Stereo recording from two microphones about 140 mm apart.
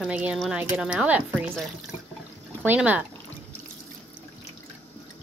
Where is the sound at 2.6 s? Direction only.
10° right (ahead or behind).